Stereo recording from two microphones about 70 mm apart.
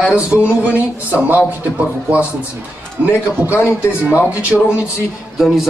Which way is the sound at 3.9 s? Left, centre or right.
Centre.